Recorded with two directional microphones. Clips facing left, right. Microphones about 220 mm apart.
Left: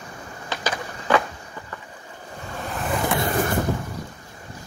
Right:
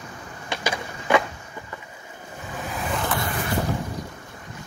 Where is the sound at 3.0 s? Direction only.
20° left (ahead or behind).